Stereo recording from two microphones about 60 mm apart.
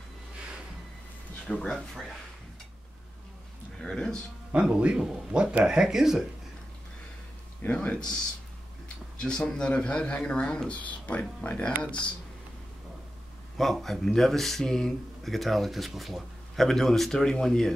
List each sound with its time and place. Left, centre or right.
1.5 s speech: centre
3.7 s speech: centre
4.5 s speech: centre
7.6 s speech: left
10.7 s speech: left
13.6 s speech: centre